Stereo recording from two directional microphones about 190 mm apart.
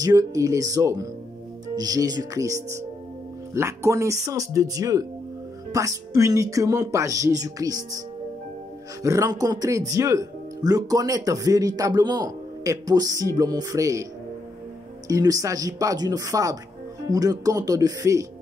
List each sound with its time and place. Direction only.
0.0 s speech: 20° right (ahead or behind)
9.0 s speech: 15° right (ahead or behind)
15.0 s speech: 20° right (ahead or behind)